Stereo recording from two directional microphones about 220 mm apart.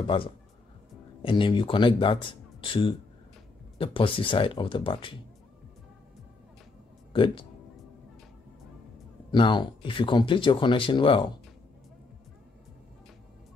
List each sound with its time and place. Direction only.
0.0 s speech: 25° left (ahead or behind)
7.1 s speech: 20° left (ahead or behind)
9.3 s speech: 20° left (ahead or behind)